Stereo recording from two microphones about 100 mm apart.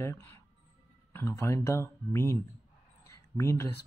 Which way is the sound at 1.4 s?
30° left (ahead or behind).